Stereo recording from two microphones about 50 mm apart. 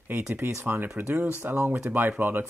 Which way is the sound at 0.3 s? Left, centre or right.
Right.